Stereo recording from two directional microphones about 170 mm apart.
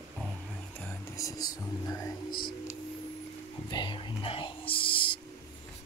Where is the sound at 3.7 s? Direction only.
25° left (ahead or behind).